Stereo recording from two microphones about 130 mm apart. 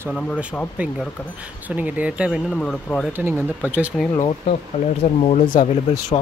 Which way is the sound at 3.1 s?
15° right (ahead or behind).